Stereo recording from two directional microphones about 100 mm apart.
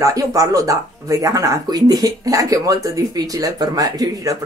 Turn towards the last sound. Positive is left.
turn(degrees=-35)  # may be behind; listen again after turning